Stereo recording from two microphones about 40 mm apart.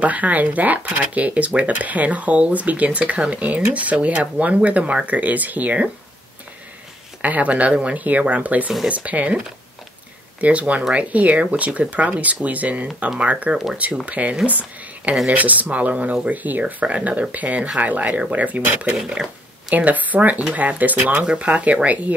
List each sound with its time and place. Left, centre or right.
0.0 s speech: right
7.2 s speech: right
10.4 s speech: right
18.9 s speech: centre
19.7 s speech: right